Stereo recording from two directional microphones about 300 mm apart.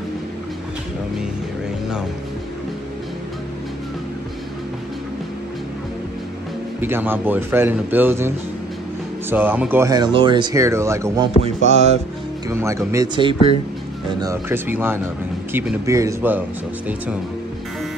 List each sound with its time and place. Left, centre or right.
6.8 s speech: centre
9.3 s speech: centre
11.4 s music: right
12.4 s speech: centre